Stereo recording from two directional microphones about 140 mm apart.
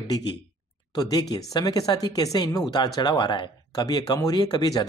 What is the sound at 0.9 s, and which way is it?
Speech, 30° left (ahead or behind).